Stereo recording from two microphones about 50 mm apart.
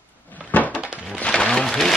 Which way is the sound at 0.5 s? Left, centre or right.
Left.